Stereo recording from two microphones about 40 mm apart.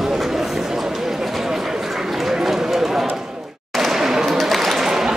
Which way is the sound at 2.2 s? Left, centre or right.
Centre.